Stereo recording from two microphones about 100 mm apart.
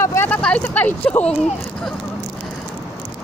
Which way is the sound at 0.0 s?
30° left (ahead or behind).